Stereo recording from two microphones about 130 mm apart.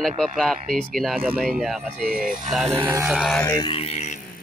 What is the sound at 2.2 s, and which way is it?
Speech, 90° right.